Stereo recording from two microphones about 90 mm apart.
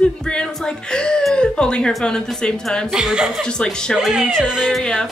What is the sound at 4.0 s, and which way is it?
Speech, centre (ahead or behind).